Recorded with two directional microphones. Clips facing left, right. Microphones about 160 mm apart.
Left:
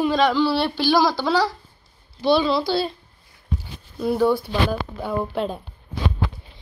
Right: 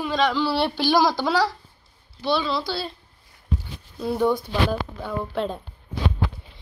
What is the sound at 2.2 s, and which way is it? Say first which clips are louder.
Speech: left 5 dB; 15° left (ahead or behind).